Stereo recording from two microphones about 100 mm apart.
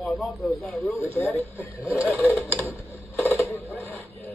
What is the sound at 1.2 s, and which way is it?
Speech, 25° left (ahead or behind).